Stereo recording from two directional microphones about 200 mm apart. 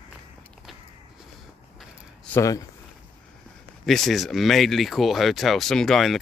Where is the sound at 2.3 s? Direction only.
15° left (ahead or behind).